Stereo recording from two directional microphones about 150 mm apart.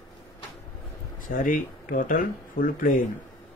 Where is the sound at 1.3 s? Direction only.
65° left (ahead or behind).